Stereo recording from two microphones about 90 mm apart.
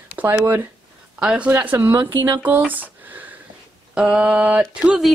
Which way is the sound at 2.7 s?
20° right (ahead or behind).